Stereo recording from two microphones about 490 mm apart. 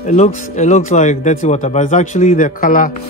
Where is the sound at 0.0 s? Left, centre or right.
Centre.